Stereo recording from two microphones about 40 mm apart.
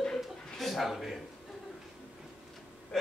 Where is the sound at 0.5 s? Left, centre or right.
Centre.